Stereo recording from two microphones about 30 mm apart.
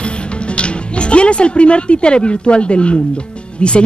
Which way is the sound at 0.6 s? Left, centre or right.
Left.